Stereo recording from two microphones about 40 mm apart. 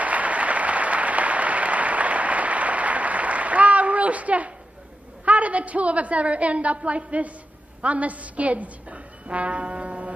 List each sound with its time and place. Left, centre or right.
0.0 s applause: right
5.2 s a woman's voice: right